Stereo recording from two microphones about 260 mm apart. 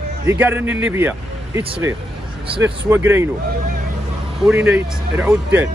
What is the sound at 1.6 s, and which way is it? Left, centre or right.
Speech, right.